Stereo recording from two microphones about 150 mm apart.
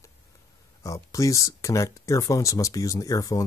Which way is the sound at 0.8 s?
20° left (ahead or behind).